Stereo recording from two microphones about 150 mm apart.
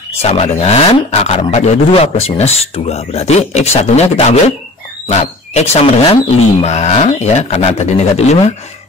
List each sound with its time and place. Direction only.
0.2 s speech: 40° left (ahead or behind)